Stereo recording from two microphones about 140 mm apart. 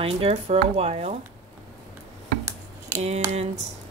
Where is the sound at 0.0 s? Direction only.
45° right (ahead or behind).